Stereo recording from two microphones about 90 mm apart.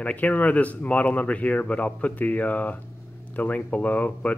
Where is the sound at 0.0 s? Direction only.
15° left (ahead or behind).